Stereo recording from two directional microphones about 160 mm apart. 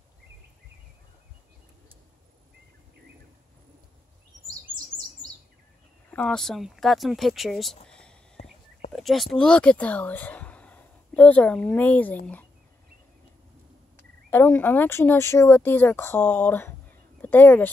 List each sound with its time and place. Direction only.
6.0 s speech: 5° left (ahead or behind)
7.9 s whispering: 5° left (ahead or behind)
8.4 s a sound: 45° left (ahead or behind)
8.9 s speech: centre (ahead or behind)
13.9 s speech: 10° left (ahead or behind)